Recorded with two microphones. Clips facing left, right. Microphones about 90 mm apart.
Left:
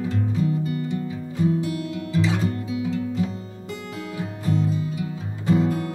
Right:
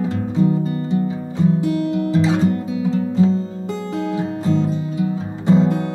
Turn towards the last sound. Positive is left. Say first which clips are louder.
# right 5 dB
turn(degrees=-25)  # may be behind; listen again after turning